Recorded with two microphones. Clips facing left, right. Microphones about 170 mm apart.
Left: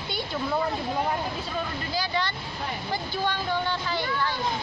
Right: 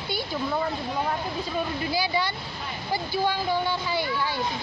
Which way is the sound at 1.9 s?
10° right (ahead or behind).